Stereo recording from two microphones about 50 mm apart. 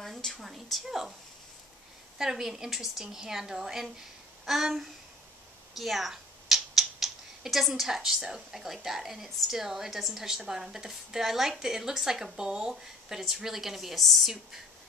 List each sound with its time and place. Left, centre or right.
0.0 s a woman's voice: centre
2.1 s a woman's voice: centre